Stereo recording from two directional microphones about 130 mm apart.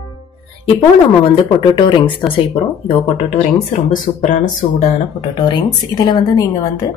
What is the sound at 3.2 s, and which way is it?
Speech, 60° left (ahead or behind).